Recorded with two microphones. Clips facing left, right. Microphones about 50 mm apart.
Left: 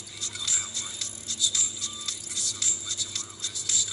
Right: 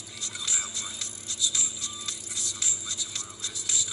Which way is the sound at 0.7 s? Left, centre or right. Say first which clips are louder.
Even; right.